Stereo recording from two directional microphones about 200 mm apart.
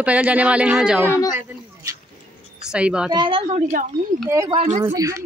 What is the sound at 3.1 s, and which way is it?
Speech, 25° right (ahead or behind).